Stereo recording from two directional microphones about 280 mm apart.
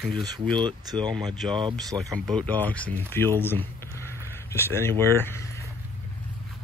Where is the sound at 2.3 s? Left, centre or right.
Centre.